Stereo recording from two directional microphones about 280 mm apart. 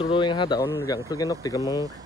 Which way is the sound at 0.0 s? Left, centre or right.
Centre.